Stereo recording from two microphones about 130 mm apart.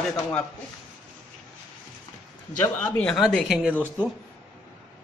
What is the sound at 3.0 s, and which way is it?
Speech, 5° left (ahead or behind).